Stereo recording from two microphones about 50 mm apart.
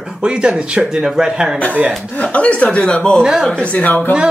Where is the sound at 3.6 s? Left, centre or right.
Left.